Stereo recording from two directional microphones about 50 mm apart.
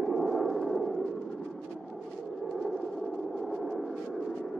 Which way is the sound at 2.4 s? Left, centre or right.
Centre.